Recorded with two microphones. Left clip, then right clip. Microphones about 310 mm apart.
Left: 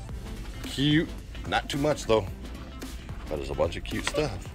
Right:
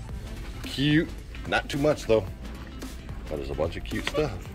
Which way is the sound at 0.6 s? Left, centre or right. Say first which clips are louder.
Right 1 dB; centre.